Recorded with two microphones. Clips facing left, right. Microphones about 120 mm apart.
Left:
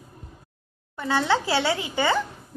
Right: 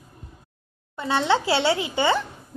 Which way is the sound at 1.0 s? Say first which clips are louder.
Right 1 dB; 20° right (ahead or behind).